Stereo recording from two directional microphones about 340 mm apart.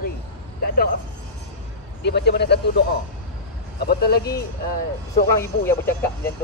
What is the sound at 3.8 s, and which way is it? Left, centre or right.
Speech, left.